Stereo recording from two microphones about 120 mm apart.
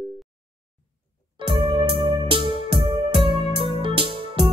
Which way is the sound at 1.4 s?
50° right (ahead or behind).